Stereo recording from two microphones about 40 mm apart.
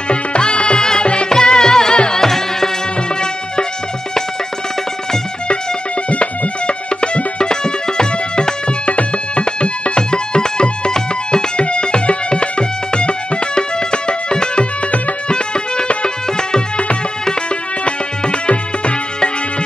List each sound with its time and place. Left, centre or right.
0.1 s music: left
6.0 s music: left
17.8 s music: left